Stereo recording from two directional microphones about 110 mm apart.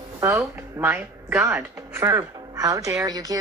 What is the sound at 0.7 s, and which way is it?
A woman's voice, 20° right (ahead or behind).